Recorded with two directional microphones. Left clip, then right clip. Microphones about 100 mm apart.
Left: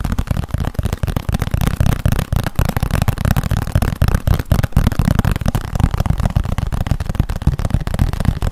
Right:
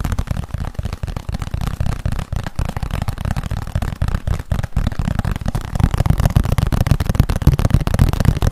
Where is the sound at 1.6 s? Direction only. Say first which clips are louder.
Left 6 dB; 30° left (ahead or behind).